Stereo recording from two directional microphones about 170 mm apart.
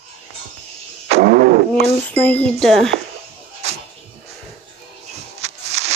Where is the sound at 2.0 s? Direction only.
10° left (ahead or behind).